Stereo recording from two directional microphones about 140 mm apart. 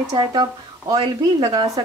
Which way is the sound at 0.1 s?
30° right (ahead or behind).